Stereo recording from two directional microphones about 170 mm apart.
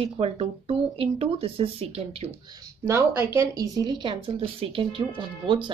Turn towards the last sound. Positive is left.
turn(degrees=-25)  # may be behind; listen again after turning